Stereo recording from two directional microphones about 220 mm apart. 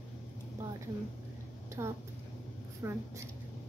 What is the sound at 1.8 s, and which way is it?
Speech, 20° right (ahead or behind).